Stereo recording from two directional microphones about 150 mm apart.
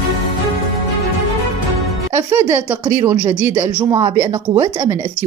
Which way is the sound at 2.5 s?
15° right (ahead or behind).